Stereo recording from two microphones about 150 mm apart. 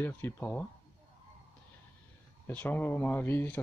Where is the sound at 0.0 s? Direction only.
15° left (ahead or behind).